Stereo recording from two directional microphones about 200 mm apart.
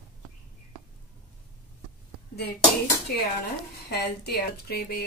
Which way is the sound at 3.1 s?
50° left (ahead or behind).